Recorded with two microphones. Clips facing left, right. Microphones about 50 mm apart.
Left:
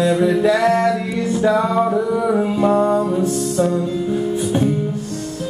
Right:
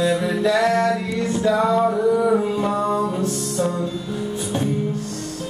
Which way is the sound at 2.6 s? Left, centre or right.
Left.